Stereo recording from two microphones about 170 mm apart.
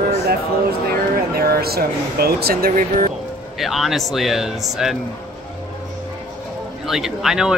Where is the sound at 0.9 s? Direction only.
60° right (ahead or behind).